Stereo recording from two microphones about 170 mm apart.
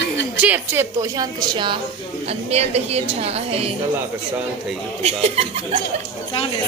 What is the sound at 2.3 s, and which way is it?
A woman's voice, 40° right (ahead or behind).